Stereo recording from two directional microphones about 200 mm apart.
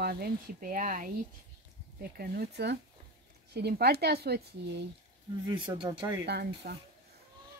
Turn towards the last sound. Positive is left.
turn(degrees=-55)  # may be behind; listen again after turning